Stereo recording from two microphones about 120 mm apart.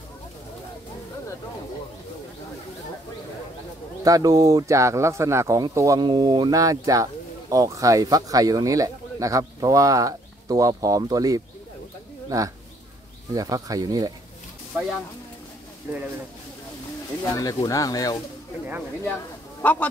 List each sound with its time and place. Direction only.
4.0 s speech: 30° right (ahead or behind)
17.4 s speech: 30° left (ahead or behind)
19.6 s speech: 10° left (ahead or behind)